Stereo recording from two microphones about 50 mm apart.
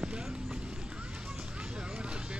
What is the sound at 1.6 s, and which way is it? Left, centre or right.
Vehicle, centre.